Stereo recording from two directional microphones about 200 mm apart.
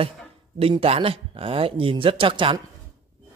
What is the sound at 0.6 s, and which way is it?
Speech, 30° right (ahead or behind).